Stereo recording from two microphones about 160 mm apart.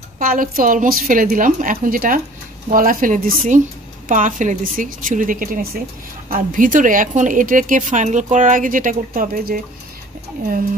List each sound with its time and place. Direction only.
0.2 s speech: 60° right (ahead or behind)